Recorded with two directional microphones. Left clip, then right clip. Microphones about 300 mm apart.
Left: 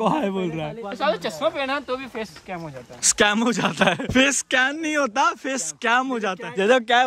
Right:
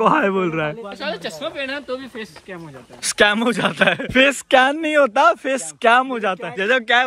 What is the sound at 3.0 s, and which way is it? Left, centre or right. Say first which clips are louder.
Speech: right 3 dB; centre.